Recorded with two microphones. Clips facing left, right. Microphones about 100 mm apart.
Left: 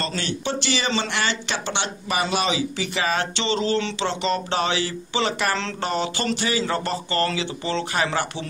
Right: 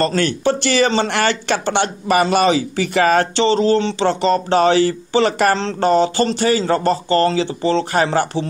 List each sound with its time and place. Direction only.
0.0 s speech: 50° right (ahead or behind)